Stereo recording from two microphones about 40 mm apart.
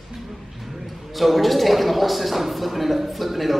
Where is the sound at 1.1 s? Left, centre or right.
Centre.